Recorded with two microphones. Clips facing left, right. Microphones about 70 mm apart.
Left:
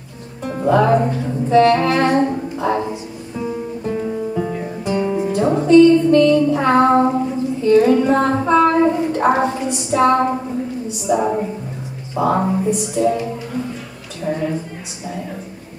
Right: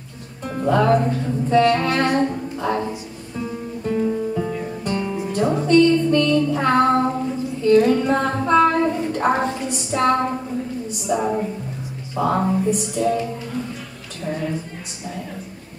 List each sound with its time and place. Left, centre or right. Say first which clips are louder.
0.5 s music: left 3 dB; centre
1.5 s a sound: left 4 dB; centre
3.3 s music: left 4 dB; centre
5.3 s music: left 4 dB; centre
11.1 s a woman's voice: left 4 dB; centre
12.2 s music: left 2 dB; centre
14.2 s a woman's voice: left 4 dB; centre